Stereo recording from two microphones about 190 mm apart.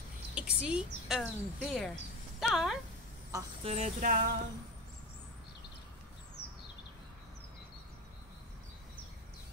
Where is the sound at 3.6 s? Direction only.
35° right (ahead or behind).